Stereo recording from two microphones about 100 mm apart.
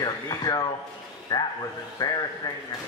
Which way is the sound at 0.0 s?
40° left (ahead or behind).